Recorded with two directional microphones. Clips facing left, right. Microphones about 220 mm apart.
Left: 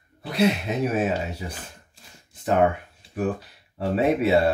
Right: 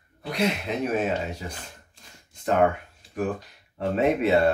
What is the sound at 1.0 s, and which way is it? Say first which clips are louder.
Shuffling cards: left 2 dB; 5° left (ahead or behind).